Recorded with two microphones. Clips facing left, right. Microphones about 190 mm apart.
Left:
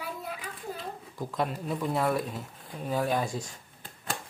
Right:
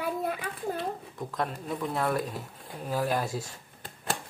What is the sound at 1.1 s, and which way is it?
Speech, centre (ahead or behind).